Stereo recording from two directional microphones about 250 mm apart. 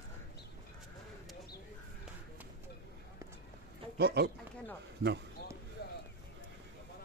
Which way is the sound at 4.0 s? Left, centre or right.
Right.